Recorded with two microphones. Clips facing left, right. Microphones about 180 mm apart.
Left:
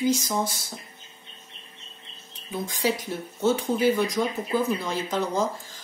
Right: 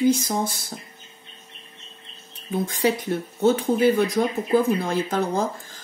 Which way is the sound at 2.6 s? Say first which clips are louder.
Right 3 dB; 60° right (ahead or behind).